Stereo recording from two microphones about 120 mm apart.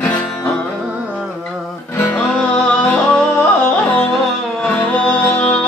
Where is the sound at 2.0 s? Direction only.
20° left (ahead or behind).